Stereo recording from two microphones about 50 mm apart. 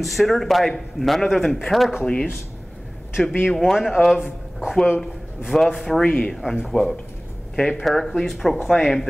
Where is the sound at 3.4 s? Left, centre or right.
Centre.